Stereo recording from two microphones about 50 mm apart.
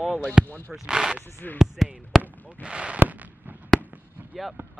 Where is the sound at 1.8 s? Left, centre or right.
Centre.